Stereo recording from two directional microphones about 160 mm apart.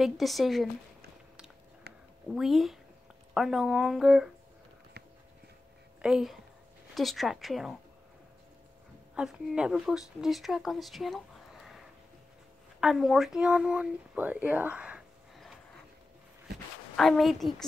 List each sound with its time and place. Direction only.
0.0 s speech: centre (ahead or behind)
1.9 s a sound: 85° right
2.3 s speech: centre (ahead or behind)
6.0 s speech: 5° right (ahead or behind)
9.1 s speech: 5° right (ahead or behind)
16.9 s speech: centre (ahead or behind)